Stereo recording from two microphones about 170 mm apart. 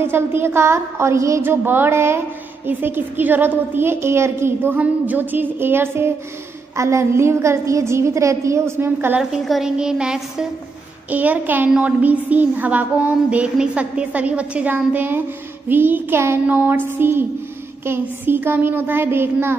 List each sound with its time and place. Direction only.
0.0 s a woman's voice: 15° right (ahead or behind)
9.2 s a woman's voice: centre (ahead or behind)